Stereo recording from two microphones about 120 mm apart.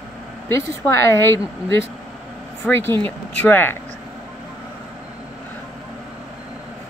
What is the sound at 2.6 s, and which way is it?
Speech, 10° left (ahead or behind).